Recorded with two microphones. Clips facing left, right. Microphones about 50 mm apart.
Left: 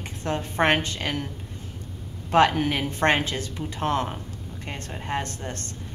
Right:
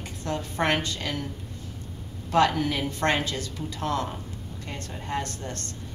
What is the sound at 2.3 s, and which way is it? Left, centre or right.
A woman's voice, left.